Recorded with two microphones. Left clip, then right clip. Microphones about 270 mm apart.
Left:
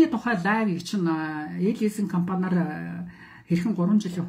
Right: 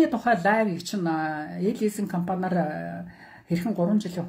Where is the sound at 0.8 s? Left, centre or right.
Centre.